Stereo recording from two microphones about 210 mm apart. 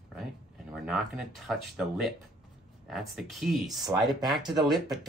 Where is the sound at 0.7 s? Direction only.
5° right (ahead or behind).